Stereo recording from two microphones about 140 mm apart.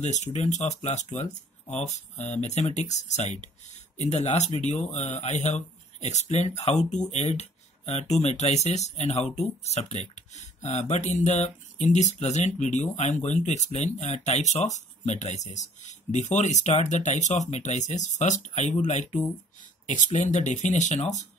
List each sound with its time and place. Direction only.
0.0 s speech: 55° left (ahead or behind)